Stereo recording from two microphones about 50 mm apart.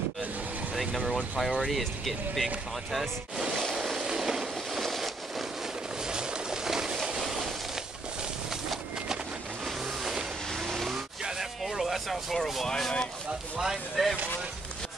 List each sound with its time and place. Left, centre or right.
0.7 s speech: centre
3.5 s vehicle: centre
5.9 s a sound: centre
9.7 s vehicle: centre
10.5 s vehicle: centre
11.6 s a sound: centre
12.6 s speech: centre
13.6 s speech: centre